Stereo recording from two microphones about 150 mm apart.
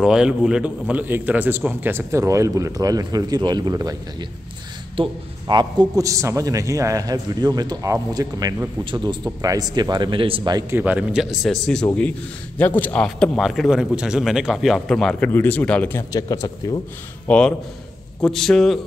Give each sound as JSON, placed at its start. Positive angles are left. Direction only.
{"t": 0.0, "sound": "a man's voice", "side_deg": -5}
{"t": 10.7, "sound": "a man's voice", "side_deg": -10}
{"t": 16.0, "sound": "speech", "side_deg": 25}
{"t": 17.3, "sound": "a man's voice", "side_deg": 5}